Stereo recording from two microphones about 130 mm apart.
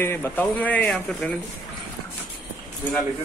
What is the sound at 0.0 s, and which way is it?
Speech, 15° left (ahead or behind).